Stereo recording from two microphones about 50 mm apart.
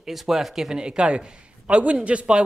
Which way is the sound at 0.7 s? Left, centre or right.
Centre.